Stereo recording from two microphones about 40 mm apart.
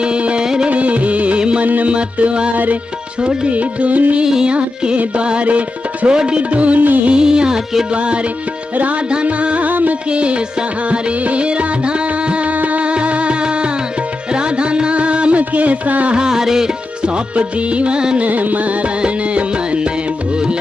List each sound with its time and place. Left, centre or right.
0.0 s music: right
1.9 s music: right
2.5 s music: right
3.2 s music: right
3.5 s music: right
4.2 s music: right
7.1 s music: right
9.7 s music: right
10.1 s music: right
16.2 s music: centre
17.0 s music: right
18.2 s music: right
18.9 s music: right